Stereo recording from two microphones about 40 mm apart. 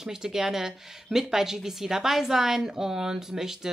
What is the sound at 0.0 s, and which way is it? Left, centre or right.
Speech, centre.